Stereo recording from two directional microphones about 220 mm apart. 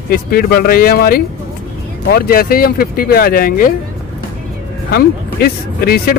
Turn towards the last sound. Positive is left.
turn(degrees=45)  # may be behind; listen again after turning